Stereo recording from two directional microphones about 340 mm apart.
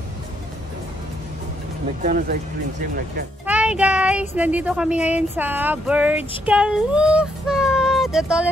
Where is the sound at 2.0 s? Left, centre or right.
Right.